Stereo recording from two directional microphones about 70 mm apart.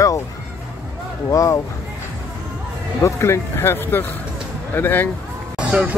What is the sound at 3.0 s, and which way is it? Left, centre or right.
Speech, left.